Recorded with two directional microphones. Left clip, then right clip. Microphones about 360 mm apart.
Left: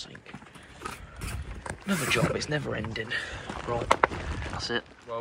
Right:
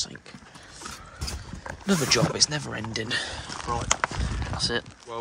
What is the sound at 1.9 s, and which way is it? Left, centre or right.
Speech, centre.